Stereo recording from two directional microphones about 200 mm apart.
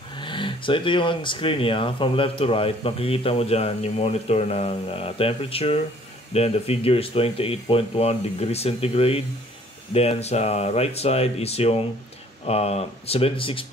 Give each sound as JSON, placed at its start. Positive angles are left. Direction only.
{"t": 0.1, "sound": "speech", "side_deg": 25}